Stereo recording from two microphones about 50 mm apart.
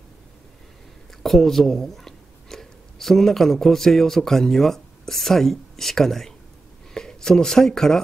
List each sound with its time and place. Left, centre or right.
1.2 s speech: centre